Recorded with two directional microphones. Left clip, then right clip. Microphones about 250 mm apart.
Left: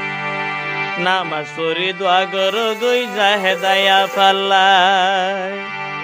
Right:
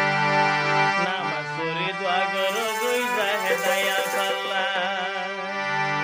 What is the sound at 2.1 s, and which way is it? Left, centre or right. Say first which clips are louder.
Music: left 8 dB; left.